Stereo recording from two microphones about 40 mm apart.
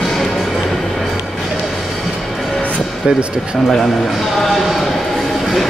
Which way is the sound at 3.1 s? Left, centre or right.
Right.